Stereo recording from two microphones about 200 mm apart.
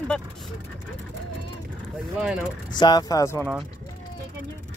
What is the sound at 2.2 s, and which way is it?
Speech, 5° right (ahead or behind).